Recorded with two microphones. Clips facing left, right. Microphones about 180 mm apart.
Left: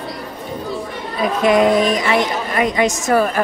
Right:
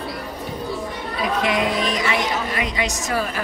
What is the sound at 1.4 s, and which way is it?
Speech, 45° left (ahead or behind).